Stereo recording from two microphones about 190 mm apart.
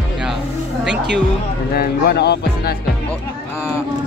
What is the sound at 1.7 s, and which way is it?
Speech, 55° left (ahead or behind).